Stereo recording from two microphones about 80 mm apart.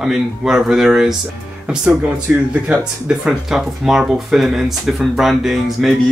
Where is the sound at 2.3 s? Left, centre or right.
Centre.